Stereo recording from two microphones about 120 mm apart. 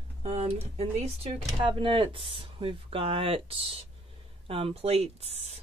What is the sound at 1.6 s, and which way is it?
Speech, 45° right (ahead or behind).